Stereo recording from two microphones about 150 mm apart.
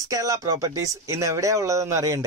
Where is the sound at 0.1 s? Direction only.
20° right (ahead or behind).